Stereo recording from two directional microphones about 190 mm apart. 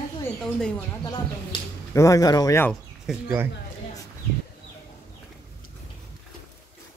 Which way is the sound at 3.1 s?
10° right (ahead or behind).